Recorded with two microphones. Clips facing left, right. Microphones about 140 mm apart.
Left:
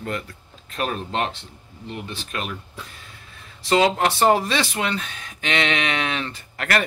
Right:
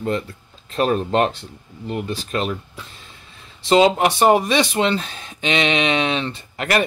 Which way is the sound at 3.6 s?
20° right (ahead or behind).